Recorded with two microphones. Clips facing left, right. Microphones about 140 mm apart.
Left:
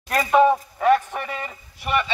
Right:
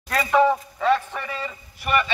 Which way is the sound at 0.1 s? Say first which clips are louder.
Left 2 dB; 20° left (ahead or behind).